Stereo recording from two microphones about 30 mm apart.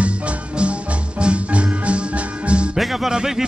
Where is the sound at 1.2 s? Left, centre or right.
Right.